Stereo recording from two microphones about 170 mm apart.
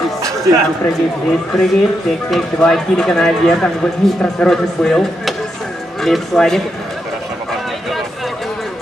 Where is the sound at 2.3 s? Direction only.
Centre (ahead or behind).